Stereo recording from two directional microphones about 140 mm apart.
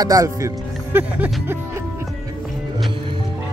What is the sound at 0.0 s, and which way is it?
Speech, 25° right (ahead or behind).